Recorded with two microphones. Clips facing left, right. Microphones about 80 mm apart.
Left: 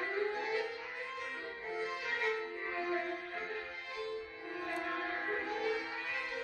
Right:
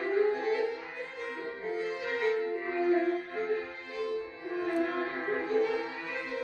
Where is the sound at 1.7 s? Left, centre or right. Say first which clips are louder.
Right 5 dB; right.